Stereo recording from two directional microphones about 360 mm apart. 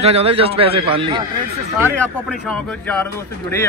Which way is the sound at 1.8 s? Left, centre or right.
Centre.